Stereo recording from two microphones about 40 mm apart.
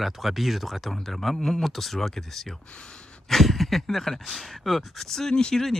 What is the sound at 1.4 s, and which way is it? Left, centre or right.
Speech, centre.